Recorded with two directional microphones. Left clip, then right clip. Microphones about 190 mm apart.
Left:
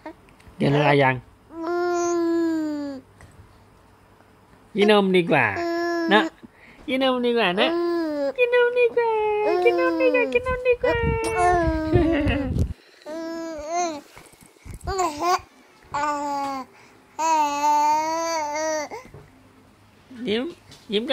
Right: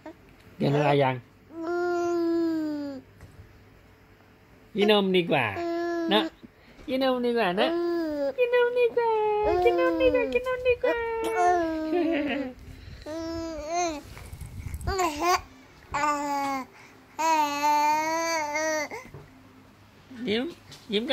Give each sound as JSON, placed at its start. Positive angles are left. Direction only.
{"t": 0.8, "sound": "speech", "side_deg": 45}
{"t": 1.6, "sound": "a sound", "side_deg": 20}
{"t": 4.8, "sound": "speech", "side_deg": 40}
{"t": 5.5, "sound": "babbling", "side_deg": 25}
{"t": 6.9, "sound": "a child's voice", "side_deg": 25}
{"t": 11.8, "sound": "a sound", "side_deg": 40}
{"t": 13.1, "sound": "babbling", "side_deg": 15}
{"t": 17.2, "sound": "babbling", "side_deg": 15}
{"t": 20.9, "sound": "a child's voice", "side_deg": 30}